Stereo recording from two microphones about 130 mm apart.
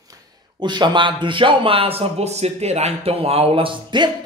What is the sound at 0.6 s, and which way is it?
Speech, 35° right (ahead or behind).